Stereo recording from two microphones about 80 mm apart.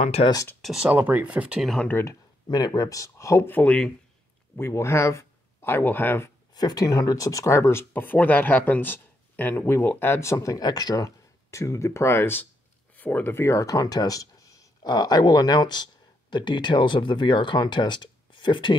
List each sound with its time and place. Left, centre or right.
0.6 s speech: centre
0.8 s speech: centre
2.4 s speech: left
3.5 s speech: centre
4.6 s speech: left
6.5 s speech: left
7.9 s speech: left
11.5 s speech: left